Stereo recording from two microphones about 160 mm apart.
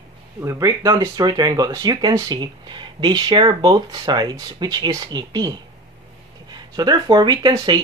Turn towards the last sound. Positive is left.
turn(degrees=-25)  # may be behind; listen again after turning